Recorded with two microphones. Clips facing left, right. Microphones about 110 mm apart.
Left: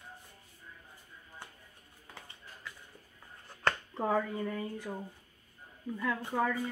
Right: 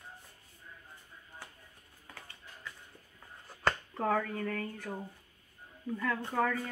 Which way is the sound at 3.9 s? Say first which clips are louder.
Even; 15° left (ahead or behind).